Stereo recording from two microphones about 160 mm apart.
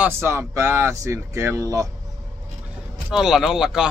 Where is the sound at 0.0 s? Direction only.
15° right (ahead or behind).